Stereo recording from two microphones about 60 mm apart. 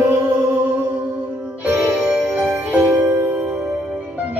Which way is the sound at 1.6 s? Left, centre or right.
Right.